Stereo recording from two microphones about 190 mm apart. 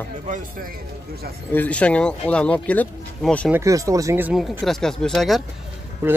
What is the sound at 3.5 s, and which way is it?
Speech, 15° right (ahead or behind).